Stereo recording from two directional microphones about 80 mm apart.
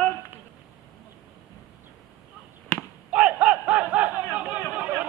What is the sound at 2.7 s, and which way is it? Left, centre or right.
Basketball bounce, centre.